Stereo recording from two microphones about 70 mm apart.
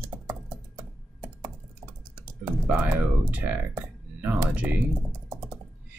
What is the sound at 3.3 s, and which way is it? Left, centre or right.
Speech, right.